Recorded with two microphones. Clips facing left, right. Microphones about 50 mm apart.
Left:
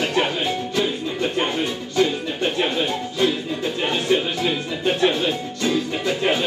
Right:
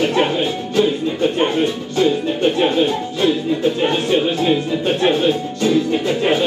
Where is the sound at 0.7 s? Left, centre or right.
Right.